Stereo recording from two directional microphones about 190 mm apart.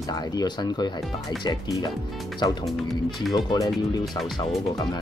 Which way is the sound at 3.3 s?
20° left (ahead or behind).